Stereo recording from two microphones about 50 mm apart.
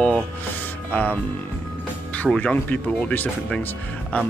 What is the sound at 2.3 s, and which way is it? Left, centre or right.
Speech, centre.